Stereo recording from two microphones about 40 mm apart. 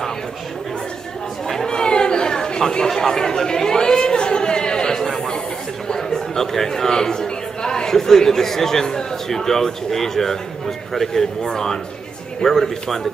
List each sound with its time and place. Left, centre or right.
1.7 s chatter: left
5.9 s a man's voice: centre